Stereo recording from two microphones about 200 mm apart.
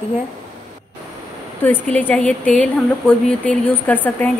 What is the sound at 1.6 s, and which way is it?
A woman's voice, 10° left (ahead or behind).